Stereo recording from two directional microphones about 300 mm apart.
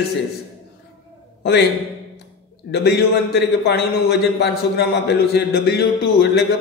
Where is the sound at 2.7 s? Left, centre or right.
Left.